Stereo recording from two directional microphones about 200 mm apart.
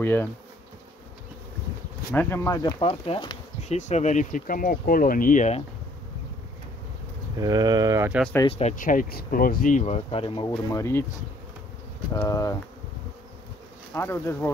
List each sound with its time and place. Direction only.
0.0 s speech: 10° left (ahead or behind)
2.1 s speech: 10° left (ahead or behind)
3.7 s speech: 35° left (ahead or behind)
7.3 s speech: 20° right (ahead or behind)
8.1 s speech: 5° left (ahead or behind)
8.5 s speech: 30° left (ahead or behind)
10.7 s speech: 15° left (ahead or behind)
12.1 s speech: 15° left (ahead or behind)
13.9 s speech: 10° left (ahead or behind)